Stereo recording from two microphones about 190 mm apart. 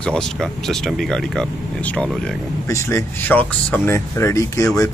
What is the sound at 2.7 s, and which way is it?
Speech, 15° left (ahead or behind).